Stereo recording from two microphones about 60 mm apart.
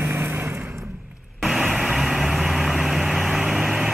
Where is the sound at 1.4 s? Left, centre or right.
Centre.